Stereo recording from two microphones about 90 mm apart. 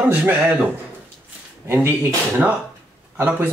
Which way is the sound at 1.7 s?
25° right (ahead or behind).